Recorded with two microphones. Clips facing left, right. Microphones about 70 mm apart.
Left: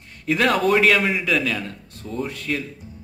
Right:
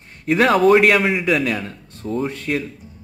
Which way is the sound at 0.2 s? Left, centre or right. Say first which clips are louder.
Right 5 dB; right.